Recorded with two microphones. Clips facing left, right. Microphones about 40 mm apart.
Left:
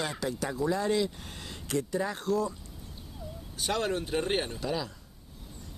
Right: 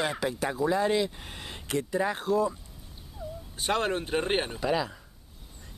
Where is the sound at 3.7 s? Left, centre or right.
Right.